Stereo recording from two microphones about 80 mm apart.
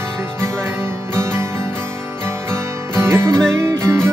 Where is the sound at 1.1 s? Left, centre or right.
Right.